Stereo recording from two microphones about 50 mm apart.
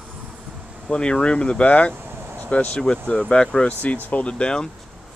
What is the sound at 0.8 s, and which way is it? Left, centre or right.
Speech, centre.